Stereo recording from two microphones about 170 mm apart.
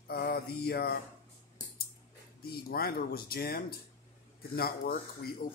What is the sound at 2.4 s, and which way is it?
Speech, 60° left (ahead or behind).